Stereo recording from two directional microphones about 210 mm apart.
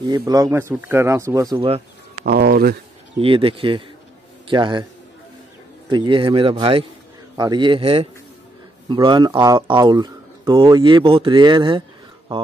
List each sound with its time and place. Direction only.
0.0 s speech: 20° right (ahead or behind)
2.2 s speech: 50° right (ahead or behind)
3.2 s speech: 25° right (ahead or behind)
5.9 s speech: 20° right (ahead or behind)